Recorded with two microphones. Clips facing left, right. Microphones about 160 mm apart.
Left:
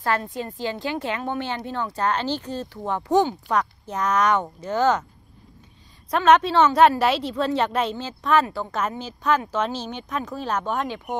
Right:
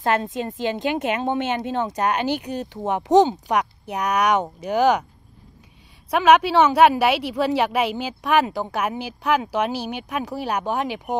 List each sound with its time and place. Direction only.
0.0 s a woman's voice: 20° right (ahead or behind)
6.0 s a woman's voice: 10° right (ahead or behind)